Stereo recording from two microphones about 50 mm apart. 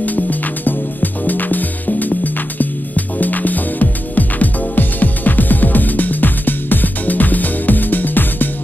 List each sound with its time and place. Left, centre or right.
0.0 s music: left